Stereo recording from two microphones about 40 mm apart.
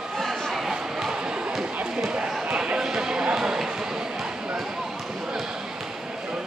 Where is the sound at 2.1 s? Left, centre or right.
Right.